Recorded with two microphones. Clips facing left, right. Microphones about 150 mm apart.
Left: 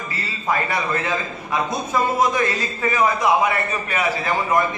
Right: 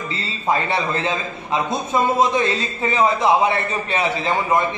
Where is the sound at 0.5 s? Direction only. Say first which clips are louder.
Right 2 dB; 25° right (ahead or behind).